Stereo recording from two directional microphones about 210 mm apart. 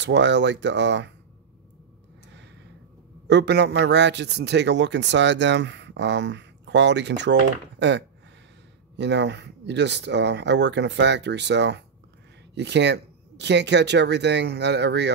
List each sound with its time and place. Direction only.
0.0 s a man's voice: 55° right (ahead or behind)
3.3 s a man's voice: 55° right (ahead or behind)